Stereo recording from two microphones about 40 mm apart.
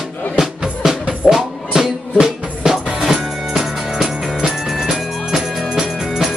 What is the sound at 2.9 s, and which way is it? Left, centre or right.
Music, centre.